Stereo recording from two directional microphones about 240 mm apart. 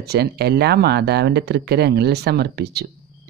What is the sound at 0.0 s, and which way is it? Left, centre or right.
Speech, right.